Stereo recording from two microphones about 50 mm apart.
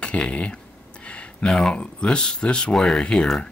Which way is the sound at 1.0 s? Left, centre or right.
Left.